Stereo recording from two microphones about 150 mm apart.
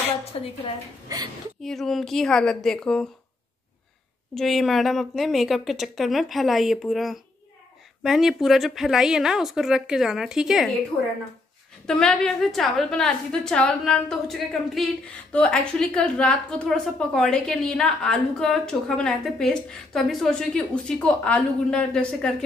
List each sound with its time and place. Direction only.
0.2 s a woman's voice: 40° left (ahead or behind)
1.0 s a woman's voice: 25° right (ahead or behind)
1.6 s a woman's voice: centre (ahead or behind)
4.4 s a woman's voice: centre (ahead or behind)
11.8 s a woman's voice: 5° left (ahead or behind)